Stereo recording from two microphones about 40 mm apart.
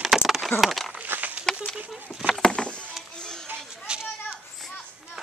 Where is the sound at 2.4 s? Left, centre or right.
Left.